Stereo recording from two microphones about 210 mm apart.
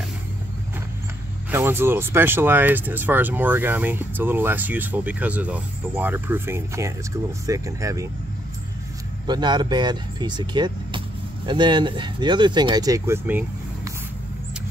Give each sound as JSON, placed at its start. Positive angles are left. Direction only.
{"t": 1.5, "sound": "speech", "side_deg": -10}
{"t": 9.3, "sound": "speech", "side_deg": -20}